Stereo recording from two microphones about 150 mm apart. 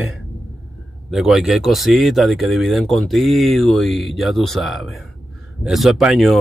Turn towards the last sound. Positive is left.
turn(degrees=0)  # may be behind; listen again after turning